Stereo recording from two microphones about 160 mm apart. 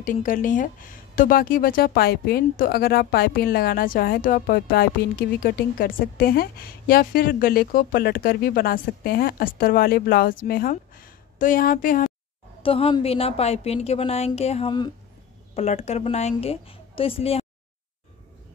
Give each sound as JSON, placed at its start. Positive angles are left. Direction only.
{"t": 0.0, "sound": "a woman's voice", "side_deg": 55}
{"t": 12.6, "sound": "a woman's voice", "side_deg": 40}